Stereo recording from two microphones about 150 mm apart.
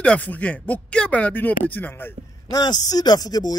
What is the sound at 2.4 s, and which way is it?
Speech, 25° left (ahead or behind).